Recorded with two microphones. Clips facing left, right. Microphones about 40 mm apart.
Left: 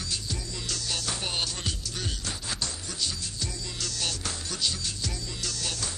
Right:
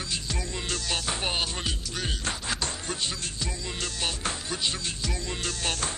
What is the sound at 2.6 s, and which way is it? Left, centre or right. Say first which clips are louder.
Music: right 3 dB; right.